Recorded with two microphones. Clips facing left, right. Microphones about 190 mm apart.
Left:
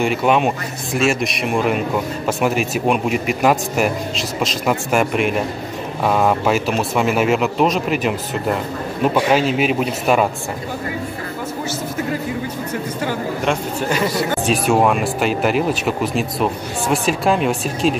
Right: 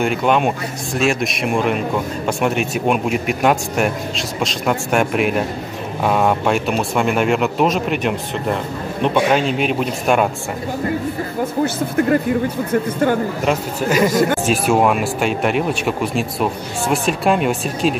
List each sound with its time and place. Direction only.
0.0 s speech: centre (ahead or behind)
13.5 s a man's voice: 5° right (ahead or behind)
14.0 s speech: 45° right (ahead or behind)
14.4 s speech: centre (ahead or behind)